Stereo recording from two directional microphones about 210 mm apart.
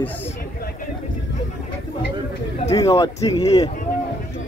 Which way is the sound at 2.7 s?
15° left (ahead or behind).